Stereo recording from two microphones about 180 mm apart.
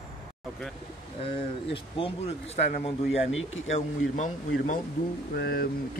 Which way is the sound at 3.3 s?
90° left.